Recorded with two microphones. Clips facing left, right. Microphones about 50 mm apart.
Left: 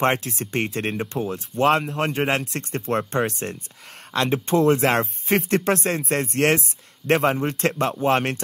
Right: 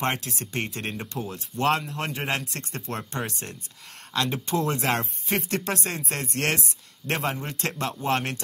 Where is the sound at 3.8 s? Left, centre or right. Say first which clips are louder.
Left 4 dB; centre.